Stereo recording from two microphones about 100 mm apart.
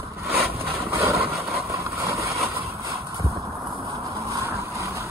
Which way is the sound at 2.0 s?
30° right (ahead or behind).